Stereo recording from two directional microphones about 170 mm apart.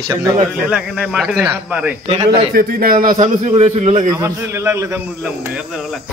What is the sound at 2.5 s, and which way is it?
Speech, 60° right (ahead or behind).